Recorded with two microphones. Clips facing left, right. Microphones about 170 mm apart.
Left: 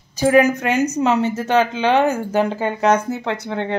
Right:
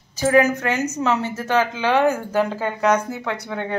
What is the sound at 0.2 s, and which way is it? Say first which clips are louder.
A woman's voice: left 3 dB; 15° left (ahead or behind).